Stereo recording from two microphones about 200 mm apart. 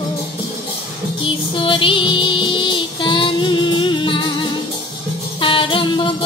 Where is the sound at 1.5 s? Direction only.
25° left (ahead or behind).